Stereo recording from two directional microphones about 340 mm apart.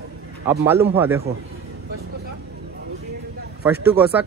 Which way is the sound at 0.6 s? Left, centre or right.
Centre.